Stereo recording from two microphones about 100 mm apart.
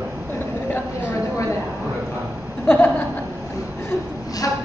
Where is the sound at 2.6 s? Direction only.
15° left (ahead or behind).